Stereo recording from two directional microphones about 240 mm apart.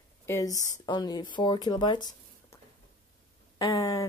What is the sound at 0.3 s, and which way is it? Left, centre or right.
Speech, centre.